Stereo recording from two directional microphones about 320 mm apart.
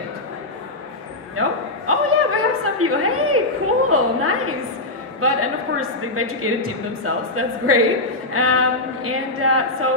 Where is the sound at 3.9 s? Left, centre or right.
Right.